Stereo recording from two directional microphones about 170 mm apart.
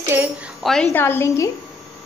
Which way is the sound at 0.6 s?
5° left (ahead or behind).